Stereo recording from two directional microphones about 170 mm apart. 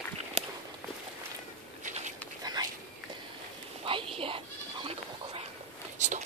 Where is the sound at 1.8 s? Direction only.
45° right (ahead or behind).